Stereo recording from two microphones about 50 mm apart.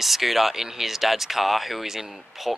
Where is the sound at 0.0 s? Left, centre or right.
Centre.